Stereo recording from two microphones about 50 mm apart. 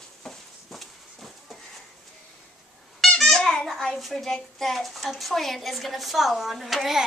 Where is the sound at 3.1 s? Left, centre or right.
Centre.